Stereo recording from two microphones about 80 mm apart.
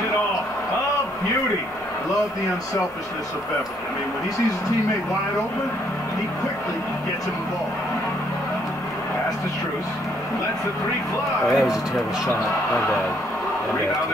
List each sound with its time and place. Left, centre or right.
11.4 s speech: centre